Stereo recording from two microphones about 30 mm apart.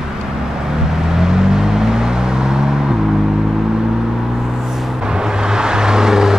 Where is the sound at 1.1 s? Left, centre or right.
Right.